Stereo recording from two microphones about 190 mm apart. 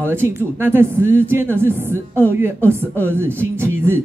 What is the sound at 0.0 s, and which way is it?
A woman's voice, 10° right (ahead or behind).